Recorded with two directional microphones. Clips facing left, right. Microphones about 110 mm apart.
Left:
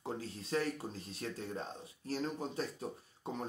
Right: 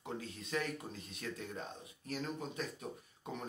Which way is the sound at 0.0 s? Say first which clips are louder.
Left 2 dB; 35° left (ahead or behind).